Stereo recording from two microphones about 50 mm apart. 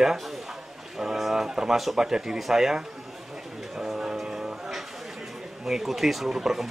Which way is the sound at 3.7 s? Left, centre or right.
Centre.